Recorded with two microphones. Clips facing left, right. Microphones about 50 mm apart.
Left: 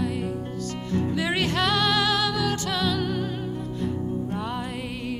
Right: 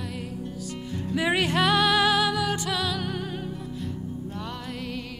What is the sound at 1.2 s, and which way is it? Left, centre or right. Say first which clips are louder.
Music: right 5 dB; centre.